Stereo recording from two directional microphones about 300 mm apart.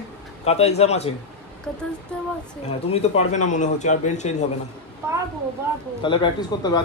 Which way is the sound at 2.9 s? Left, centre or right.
Left.